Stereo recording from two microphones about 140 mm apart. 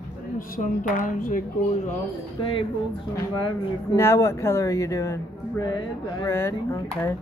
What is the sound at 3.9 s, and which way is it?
Speech, 20° left (ahead or behind).